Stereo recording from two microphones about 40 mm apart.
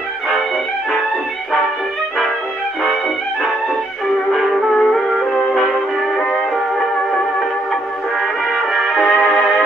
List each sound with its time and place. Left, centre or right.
4.3 s music: centre
8.5 s music: centre
9.0 s music: centre